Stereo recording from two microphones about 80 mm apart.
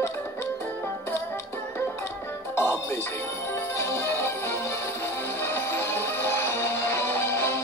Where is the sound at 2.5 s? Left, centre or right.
Left.